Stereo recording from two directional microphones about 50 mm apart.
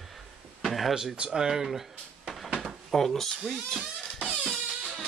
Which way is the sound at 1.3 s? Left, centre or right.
Centre.